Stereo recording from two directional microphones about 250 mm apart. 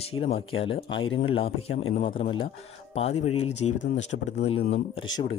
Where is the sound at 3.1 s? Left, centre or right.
Left.